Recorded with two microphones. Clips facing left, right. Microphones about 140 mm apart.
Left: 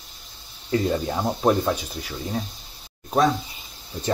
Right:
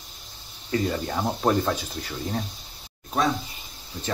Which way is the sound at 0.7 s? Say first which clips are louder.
Left 3 dB; 15° left (ahead or behind).